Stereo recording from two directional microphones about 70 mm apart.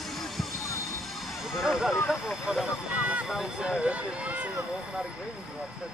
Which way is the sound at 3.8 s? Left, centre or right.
Right.